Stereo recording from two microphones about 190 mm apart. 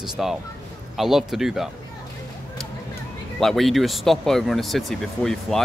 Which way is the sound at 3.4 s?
Centre (ahead or behind).